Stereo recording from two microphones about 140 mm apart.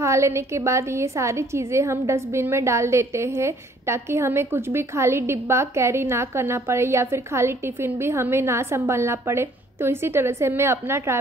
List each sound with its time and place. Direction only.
0.0 s a woman's voice: 20° right (ahead or behind)